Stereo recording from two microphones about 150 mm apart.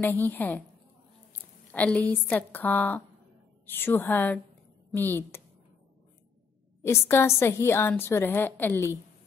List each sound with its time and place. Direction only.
0.0 s a woman's voice: 10° left (ahead or behind)
1.7 s a woman's voice: 10° left (ahead or behind)
6.8 s a woman's voice: 15° left (ahead or behind)